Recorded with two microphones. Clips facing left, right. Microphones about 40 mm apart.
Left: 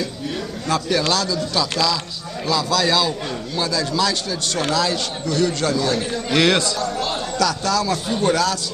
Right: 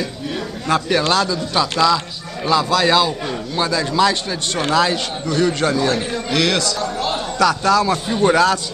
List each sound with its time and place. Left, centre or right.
0.7 s a man's voice: centre
6.3 s a man's voice: centre
6.8 s a man's voice: centre